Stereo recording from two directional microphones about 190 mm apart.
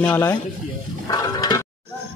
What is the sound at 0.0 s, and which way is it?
Speech, 10° left (ahead or behind).